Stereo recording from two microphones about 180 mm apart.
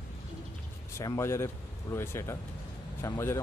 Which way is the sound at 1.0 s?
15° left (ahead or behind).